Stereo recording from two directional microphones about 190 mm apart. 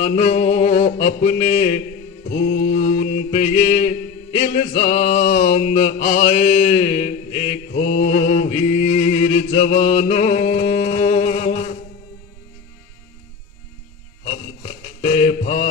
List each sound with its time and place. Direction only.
0.1 s mantra: 35° left (ahead or behind)
7.9 s chant: 40° left (ahead or behind)
14.3 s mantra: 35° left (ahead or behind)